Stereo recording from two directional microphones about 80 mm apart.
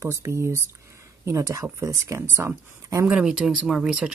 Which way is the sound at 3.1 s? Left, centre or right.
Centre.